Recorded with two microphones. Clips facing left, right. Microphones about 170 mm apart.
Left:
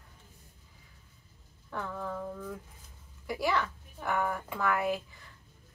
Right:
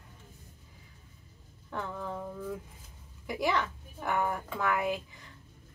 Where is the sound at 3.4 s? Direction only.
20° right (ahead or behind).